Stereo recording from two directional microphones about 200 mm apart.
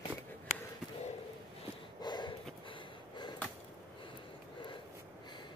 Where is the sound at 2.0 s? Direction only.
20° left (ahead or behind).